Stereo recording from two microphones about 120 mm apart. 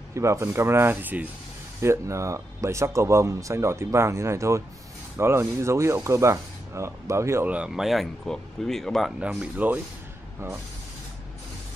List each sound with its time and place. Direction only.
0.1 s speech: 25° right (ahead or behind)
7.4 s speech: 10° right (ahead or behind)
9.2 s speech: 10° right (ahead or behind)